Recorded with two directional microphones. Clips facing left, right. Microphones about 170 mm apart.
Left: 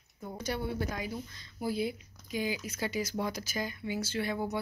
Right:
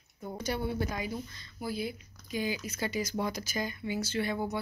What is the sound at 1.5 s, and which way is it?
Speech, 25° left (ahead or behind).